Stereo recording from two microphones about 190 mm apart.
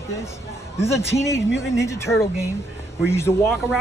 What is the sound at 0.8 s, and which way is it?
Speech, 15° left (ahead or behind).